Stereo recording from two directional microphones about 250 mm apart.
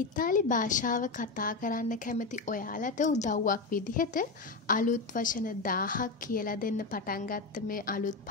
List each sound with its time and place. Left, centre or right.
0.1 s a woman's voice: left